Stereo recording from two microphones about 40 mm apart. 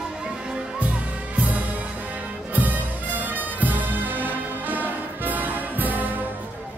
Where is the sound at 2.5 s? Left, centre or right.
Right.